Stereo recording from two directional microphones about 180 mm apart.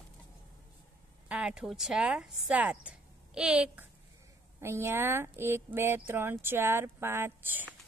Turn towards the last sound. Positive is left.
turn(degrees=-10)  # may be behind; listen again after turning